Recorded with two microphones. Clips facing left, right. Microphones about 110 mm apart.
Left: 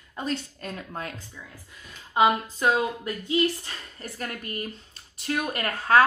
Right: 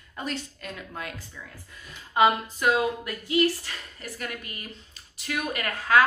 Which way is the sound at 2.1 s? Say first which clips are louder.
Even; 25° left (ahead or behind).